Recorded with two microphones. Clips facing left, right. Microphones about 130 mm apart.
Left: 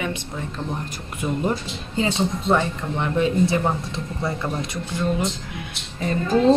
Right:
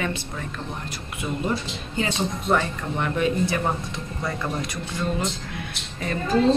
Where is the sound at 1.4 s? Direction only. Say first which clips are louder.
Left 2 dB; 25° left (ahead or behind).